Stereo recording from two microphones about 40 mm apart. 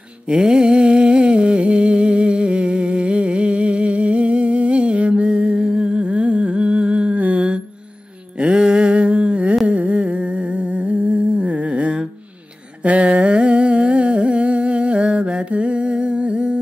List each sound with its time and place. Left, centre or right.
0.4 s a sound: centre
7.2 s mantra: right
9.7 s humming: right